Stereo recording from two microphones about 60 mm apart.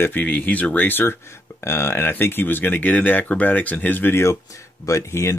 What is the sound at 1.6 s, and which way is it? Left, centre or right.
Speech, left.